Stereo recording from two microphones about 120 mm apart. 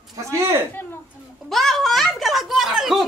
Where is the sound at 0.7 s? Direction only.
15° left (ahead or behind).